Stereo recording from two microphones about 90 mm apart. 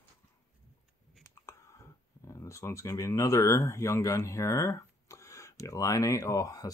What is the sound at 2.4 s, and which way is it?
Speech, 35° left (ahead or behind).